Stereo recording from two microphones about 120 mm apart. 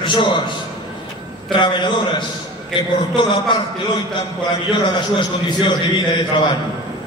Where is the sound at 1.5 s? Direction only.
40° left (ahead or behind).